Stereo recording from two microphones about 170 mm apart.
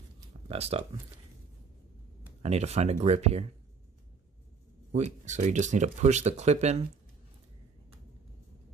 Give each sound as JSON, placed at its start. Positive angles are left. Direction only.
{"t": 0.5, "sound": "speech", "side_deg": -35}
{"t": 2.4, "sound": "speech", "side_deg": -40}
{"t": 4.9, "sound": "speech", "side_deg": -45}